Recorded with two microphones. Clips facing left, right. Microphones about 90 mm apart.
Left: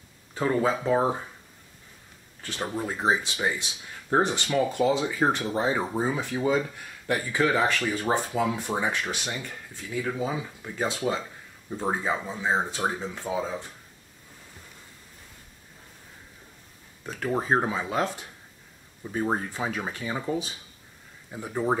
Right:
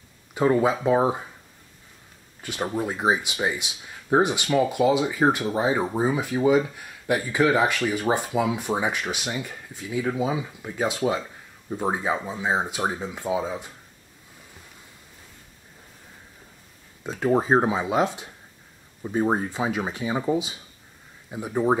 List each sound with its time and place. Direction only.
0.3 s speech: 15° right (ahead or behind)
2.4 s speech: 15° right (ahead or behind)
17.0 s speech: 20° right (ahead or behind)